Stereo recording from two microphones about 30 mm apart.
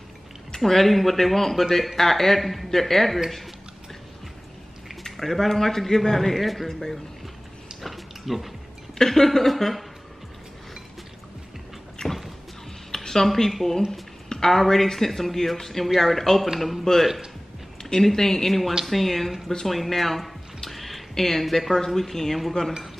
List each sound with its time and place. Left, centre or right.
0.7 s a man's voice: centre
5.1 s a woman's voice: centre
7.8 s a sound: centre
8.9 s a woman's voice: centre
12.0 s a sound: left
13.5 s a man's voice: centre
19.6 s drip: centre
21.1 s a woman's voice: centre